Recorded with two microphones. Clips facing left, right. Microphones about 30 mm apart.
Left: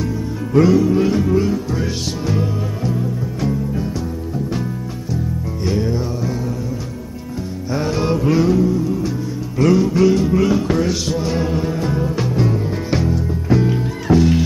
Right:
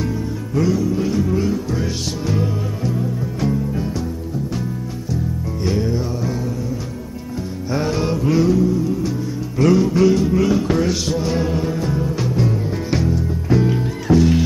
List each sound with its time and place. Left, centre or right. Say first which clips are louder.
0.6 s music: left 6 dB; centre
5.6 s music: left 1 dB; centre
7.7 s music: left 1 dB; centre